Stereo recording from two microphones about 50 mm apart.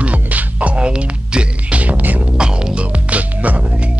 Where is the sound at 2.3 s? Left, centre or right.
Centre.